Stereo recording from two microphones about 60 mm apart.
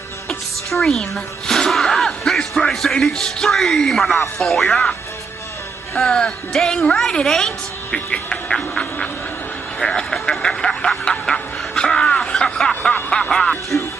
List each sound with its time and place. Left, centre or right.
0.3 s a woman's voice: centre
5.9 s a woman's voice: centre
7.9 s a woman's voice: centre
10.4 s music: centre